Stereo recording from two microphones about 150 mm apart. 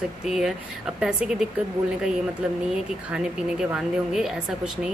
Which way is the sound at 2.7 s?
5° right (ahead or behind).